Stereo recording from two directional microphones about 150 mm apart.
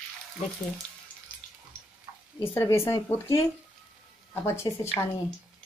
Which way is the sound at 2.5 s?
15° left (ahead or behind).